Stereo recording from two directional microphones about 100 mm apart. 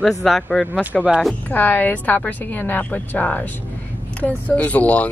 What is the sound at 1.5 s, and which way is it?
A woman's voice, 15° left (ahead or behind).